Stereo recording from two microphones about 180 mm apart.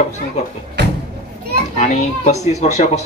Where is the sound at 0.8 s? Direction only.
70° right (ahead or behind).